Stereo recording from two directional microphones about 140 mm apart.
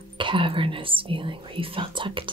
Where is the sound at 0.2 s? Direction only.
35° right (ahead or behind).